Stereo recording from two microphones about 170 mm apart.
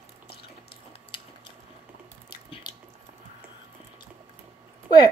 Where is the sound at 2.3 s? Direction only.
25° left (ahead or behind).